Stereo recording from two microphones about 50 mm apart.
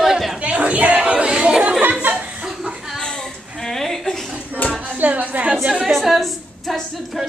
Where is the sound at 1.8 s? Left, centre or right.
Right.